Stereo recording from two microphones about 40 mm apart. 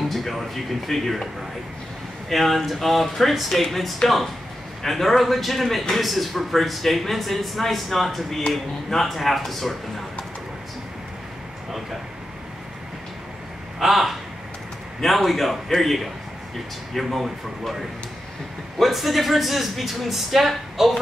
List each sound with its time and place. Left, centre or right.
0.1 s a man's voice: centre
13.7 s a man's voice: centre
18.8 s a man's voice: centre